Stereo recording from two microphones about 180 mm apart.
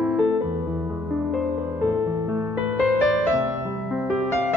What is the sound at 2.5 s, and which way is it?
Music, 10° right (ahead or behind).